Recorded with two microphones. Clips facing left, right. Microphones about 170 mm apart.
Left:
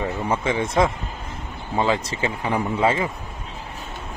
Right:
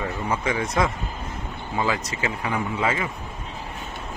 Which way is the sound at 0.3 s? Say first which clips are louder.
Left 2 dB; 25° left (ahead or behind).